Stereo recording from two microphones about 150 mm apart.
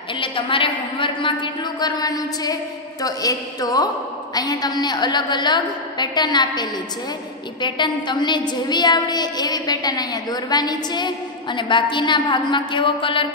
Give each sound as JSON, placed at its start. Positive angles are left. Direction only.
{"t": 0.2, "sound": "a woman's voice", "side_deg": 35}